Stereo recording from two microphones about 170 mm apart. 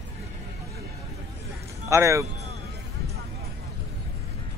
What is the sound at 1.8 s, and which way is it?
Speech, 15° right (ahead or behind).